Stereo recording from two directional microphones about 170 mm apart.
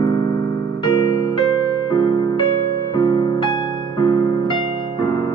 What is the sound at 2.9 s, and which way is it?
Music, 20° left (ahead or behind).